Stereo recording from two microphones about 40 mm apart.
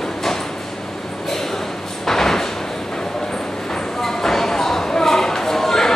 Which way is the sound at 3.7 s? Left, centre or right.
Centre.